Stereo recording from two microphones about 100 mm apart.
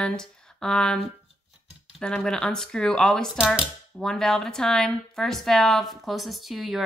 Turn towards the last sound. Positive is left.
turn(degrees=0)  # may be behind; listen again after turning